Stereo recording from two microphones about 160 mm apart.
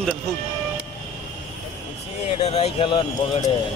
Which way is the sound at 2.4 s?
40° left (ahead or behind).